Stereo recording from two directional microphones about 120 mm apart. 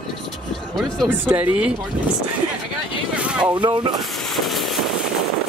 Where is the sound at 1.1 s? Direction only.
15° right (ahead or behind).